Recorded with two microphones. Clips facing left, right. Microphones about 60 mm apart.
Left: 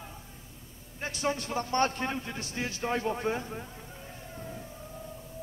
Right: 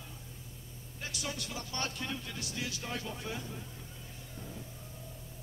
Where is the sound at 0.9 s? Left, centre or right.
Left.